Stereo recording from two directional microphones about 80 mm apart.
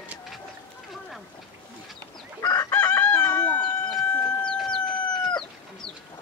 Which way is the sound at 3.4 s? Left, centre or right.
Centre.